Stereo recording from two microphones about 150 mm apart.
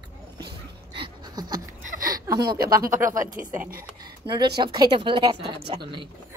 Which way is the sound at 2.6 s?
75° right (ahead or behind).